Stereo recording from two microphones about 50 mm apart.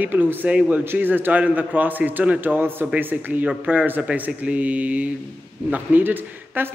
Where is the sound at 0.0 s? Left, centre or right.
Right.